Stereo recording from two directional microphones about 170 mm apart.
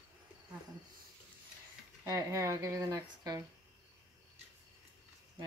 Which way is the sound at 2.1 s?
20° right (ahead or behind).